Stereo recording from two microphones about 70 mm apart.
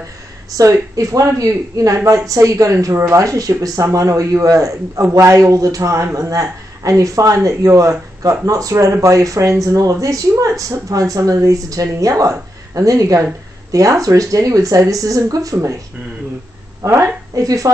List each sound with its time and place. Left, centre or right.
0.5 s speech: right
16.8 s a woman's voice: right